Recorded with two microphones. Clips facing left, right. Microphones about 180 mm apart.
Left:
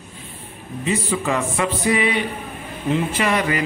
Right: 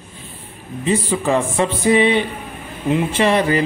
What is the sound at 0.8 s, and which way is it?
Music, 30° right (ahead or behind).